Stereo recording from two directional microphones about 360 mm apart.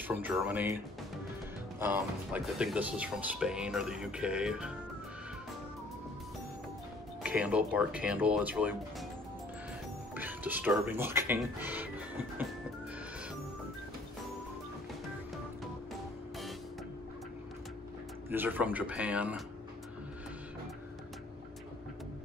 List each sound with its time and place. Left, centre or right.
0.1 s speech: centre
1.8 s speech: centre
7.2 s speech: centre
10.1 s speech: centre
18.3 s speech: centre